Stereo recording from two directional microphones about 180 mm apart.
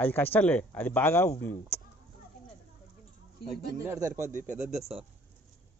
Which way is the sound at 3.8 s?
15° right (ahead or behind).